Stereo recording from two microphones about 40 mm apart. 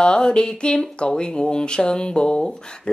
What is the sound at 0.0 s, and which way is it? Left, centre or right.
Speech, left.